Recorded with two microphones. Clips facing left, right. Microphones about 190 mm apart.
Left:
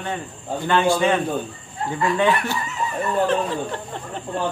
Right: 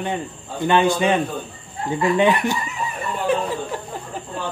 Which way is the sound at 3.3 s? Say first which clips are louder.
Right 1 dB; 5° right (ahead or behind).